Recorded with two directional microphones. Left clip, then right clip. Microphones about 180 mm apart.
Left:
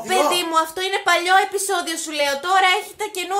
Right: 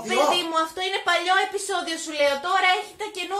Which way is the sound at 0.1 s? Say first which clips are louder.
Left 3 dB; 45° left (ahead or behind).